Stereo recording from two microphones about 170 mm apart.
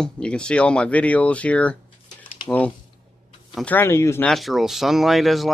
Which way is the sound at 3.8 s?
15° left (ahead or behind).